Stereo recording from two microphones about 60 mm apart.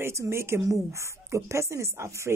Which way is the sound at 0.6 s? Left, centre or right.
Right.